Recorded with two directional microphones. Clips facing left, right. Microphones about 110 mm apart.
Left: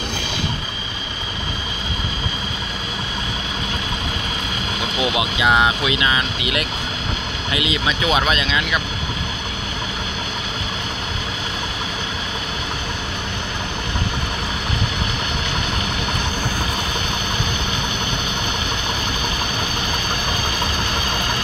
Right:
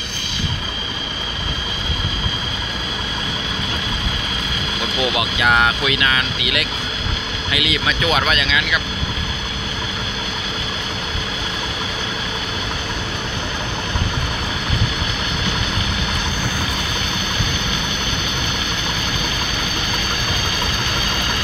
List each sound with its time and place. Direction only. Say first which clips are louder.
5.0 s speech: even; 20° left (ahead or behind)